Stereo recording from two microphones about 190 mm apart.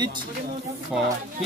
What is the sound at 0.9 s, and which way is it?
Speech, 5° right (ahead or behind).